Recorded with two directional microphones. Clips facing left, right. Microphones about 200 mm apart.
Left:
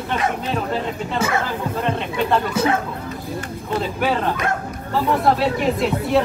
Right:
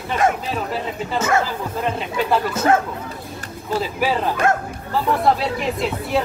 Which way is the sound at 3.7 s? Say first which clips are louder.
Even; 5° right (ahead or behind).